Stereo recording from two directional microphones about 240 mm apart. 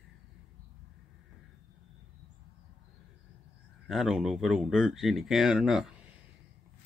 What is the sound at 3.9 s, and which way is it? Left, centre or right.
Speech, centre.